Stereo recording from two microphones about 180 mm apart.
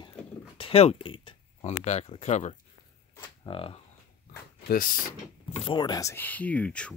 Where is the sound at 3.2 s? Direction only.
30° left (ahead or behind).